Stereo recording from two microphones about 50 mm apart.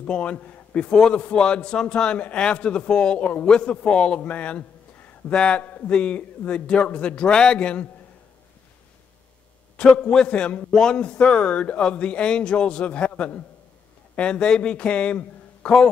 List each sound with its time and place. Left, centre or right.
0.0 s a man's voice: left
0.9 s a man's voice: centre
3.2 s speech: left
3.4 s a man's voice: centre
4.2 s a sound: left
5.3 s a man's voice: centre
5.6 s speech: left
5.9 s speech: left
10.0 s a man's voice: centre